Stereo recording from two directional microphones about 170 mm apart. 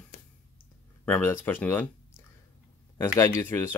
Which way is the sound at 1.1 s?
10° left (ahead or behind).